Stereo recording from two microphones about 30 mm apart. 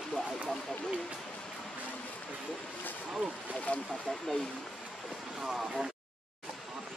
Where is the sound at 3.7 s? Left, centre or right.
Left.